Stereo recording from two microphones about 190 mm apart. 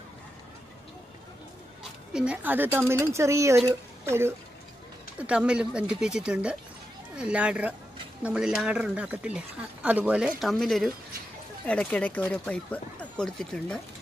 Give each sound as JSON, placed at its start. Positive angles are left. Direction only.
{"t": 1.8, "sound": "speech", "side_deg": -5}